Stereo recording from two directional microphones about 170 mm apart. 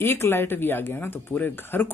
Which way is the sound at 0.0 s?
15° left (ahead or behind).